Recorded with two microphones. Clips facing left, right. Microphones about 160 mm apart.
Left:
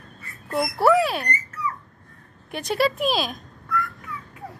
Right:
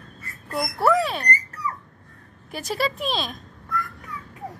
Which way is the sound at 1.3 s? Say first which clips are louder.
Even; 40° right (ahead or behind).